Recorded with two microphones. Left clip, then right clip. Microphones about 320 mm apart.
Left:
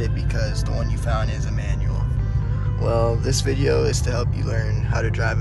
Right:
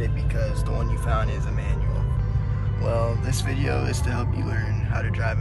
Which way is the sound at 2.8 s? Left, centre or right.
Centre.